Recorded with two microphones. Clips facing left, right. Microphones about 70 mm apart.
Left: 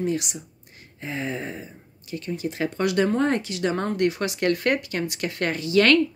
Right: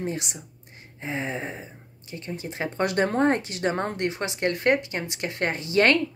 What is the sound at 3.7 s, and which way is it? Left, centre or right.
A woman's voice, right.